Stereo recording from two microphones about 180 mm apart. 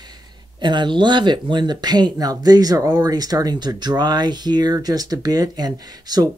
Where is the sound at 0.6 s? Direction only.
25° right (ahead or behind).